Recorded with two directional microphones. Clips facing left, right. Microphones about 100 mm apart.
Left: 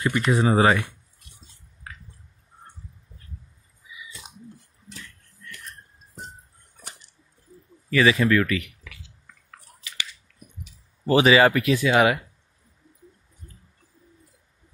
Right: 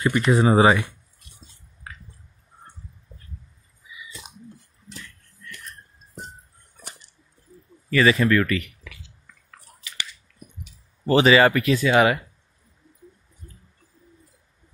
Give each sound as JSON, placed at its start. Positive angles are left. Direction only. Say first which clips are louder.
{"t": 0.0, "sound": "speech", "louder": "right 3 dB", "side_deg": -35}
{"t": 7.9, "sound": "speech", "louder": "right 1 dB", "side_deg": 5}
{"t": 11.1, "sound": "speech", "louder": "right 1 dB", "side_deg": 10}